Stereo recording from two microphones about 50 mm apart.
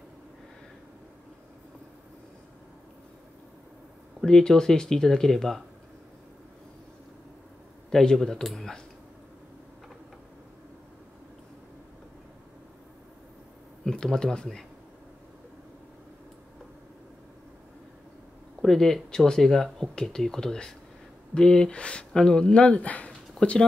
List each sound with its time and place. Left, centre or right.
4.3 s speech: centre
7.9 s speech: centre
13.8 s speech: centre
18.6 s speech: centre; by 23.5 s left